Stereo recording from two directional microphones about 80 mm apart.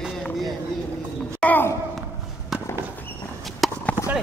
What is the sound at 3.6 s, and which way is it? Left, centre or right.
Clip-clop, centre.